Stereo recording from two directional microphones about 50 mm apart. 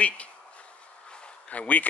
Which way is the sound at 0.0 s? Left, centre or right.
Left.